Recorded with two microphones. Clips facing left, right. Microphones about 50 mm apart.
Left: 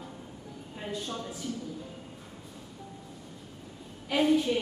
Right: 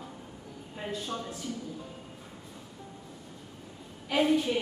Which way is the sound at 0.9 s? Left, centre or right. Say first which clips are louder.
Even; centre.